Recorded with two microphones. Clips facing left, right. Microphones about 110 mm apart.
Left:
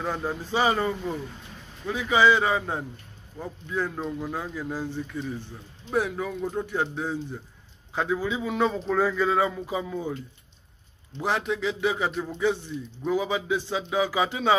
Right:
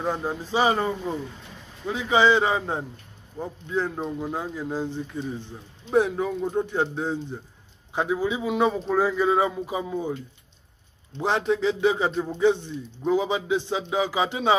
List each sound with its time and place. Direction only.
0.0 s a man's voice: 20° right (ahead or behind)
11.1 s a man's voice: 25° right (ahead or behind)